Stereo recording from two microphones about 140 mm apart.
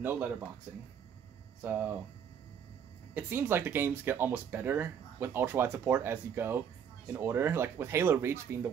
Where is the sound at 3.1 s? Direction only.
15° right (ahead or behind).